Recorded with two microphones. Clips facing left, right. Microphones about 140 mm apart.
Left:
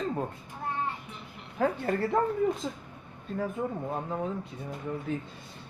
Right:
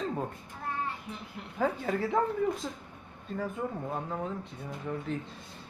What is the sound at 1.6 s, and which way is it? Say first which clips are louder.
Speech: left 2 dB; 5° right (ahead or behind).